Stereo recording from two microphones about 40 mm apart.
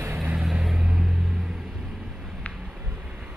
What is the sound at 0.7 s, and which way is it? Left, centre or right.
Vehicle, right.